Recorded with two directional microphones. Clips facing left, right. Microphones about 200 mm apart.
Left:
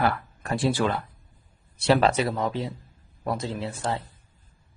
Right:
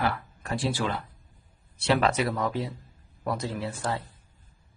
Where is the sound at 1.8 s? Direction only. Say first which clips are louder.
Left 3 dB; 35° left (ahead or behind).